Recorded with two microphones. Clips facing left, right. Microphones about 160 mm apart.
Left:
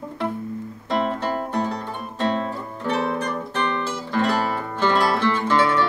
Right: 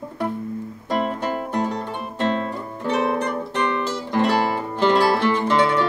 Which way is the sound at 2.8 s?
15° right (ahead or behind).